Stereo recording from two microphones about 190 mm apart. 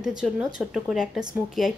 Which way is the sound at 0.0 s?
5° right (ahead or behind).